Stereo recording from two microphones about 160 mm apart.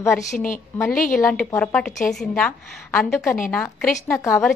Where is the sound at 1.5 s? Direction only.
5° left (ahead or behind).